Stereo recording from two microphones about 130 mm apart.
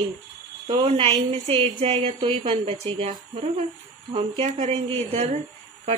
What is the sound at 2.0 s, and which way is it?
Speech, 40° right (ahead or behind).